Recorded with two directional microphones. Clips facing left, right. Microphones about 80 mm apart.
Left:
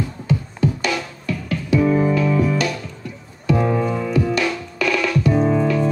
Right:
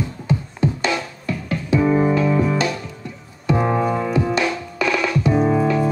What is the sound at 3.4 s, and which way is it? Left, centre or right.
Music, right.